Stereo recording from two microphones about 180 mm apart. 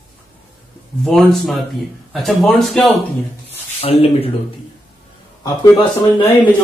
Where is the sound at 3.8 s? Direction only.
30° left (ahead or behind).